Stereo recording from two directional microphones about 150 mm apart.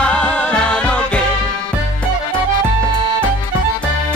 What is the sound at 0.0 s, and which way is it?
Music, 5° left (ahead or behind).